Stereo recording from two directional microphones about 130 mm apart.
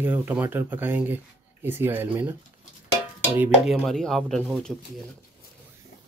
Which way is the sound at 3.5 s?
Centre (ahead or behind).